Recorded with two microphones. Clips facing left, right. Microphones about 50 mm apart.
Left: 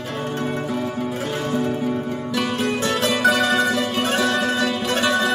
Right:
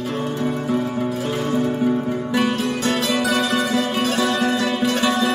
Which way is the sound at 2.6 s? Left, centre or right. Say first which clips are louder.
Left 1 dB; left.